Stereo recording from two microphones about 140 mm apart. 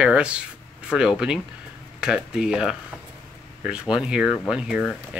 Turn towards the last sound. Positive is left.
turn(degrees=0)  # may be behind; listen again after turning